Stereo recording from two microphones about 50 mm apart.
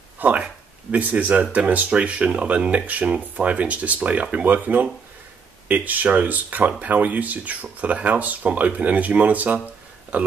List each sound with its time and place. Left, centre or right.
0.2 s speech: right
0.9 s speech: right